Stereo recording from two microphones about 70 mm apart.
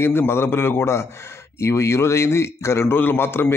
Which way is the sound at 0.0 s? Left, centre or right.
Left.